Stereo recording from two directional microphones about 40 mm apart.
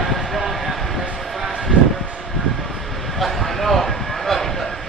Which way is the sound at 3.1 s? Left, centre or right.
Centre.